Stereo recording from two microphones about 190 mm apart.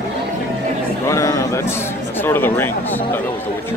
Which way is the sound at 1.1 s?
15° left (ahead or behind).